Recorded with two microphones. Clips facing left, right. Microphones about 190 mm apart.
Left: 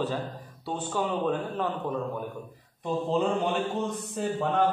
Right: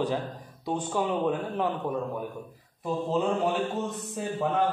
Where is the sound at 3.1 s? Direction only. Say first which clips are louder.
Even; 5° right (ahead or behind).